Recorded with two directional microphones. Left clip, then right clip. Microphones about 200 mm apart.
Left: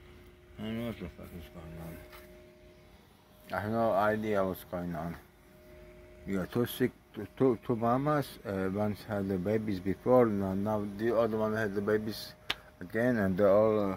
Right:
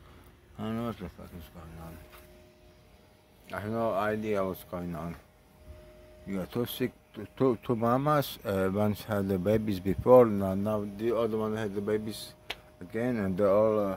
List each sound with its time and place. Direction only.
0.6 s speech: 20° right (ahead or behind)
3.4 s speech: 5° right (ahead or behind)
6.2 s speech: 5° right (ahead or behind)
7.3 s speech: 25° right (ahead or behind)
11.0 s speech: 15° right (ahead or behind)